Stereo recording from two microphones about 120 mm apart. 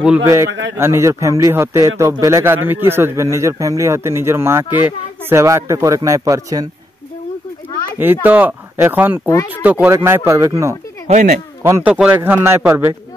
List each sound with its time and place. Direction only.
0.2 s a man's voice: 20° right (ahead or behind)
8.0 s a man's voice: 15° right (ahead or behind)
11.1 s speech: 70° right (ahead or behind)
11.6 s speech: 20° right (ahead or behind)
11.9 s speech: 10° right (ahead or behind)
12.2 s a man's voice: 20° right (ahead or behind)